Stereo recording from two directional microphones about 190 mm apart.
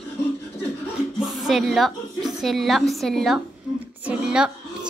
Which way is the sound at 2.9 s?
Centre (ahead or behind).